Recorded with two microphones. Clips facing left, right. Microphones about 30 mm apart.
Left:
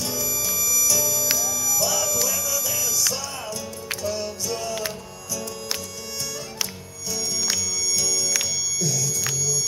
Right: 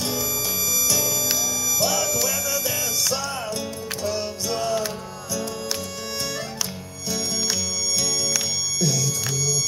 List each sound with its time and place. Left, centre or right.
0.0 s music: right
4.1 s music: right
7.1 s music: right